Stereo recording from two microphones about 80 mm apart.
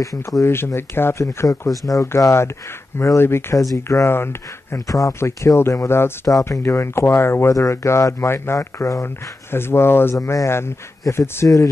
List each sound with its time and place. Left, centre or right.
0.0 s speech: left
4.8 s speech: left
10.1 s speech: left